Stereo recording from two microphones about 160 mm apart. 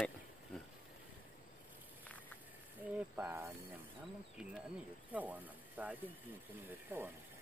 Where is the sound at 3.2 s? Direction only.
15° right (ahead or behind).